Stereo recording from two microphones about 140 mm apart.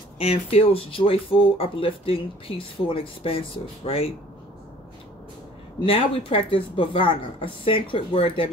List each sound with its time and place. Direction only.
0.2 s speech: 45° left (ahead or behind)
5.8 s speech: 40° left (ahead or behind)